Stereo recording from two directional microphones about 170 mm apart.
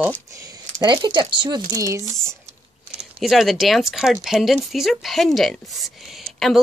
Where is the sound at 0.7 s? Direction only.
25° right (ahead or behind).